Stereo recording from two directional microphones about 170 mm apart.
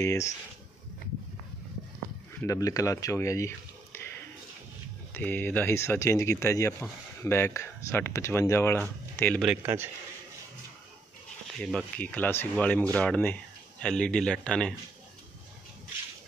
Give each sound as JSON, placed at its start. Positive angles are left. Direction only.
{"t": 0.0, "sound": "speech", "side_deg": 20}
{"t": 2.4, "sound": "speech", "side_deg": 20}
{"t": 5.1, "sound": "speech", "side_deg": 10}
{"t": 9.4, "sound": "a man's voice", "side_deg": -10}
{"t": 11.6, "sound": "speech", "side_deg": 5}